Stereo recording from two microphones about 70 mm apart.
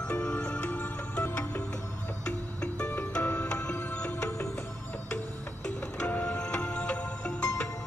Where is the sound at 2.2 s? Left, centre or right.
Centre.